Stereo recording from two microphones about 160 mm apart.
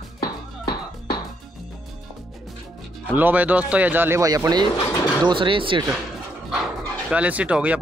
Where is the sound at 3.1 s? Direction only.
10° right (ahead or behind); by 5.8 s 30° right (ahead or behind).